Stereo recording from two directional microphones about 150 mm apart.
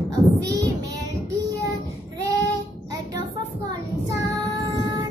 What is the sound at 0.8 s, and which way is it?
Child singing, 20° right (ahead or behind).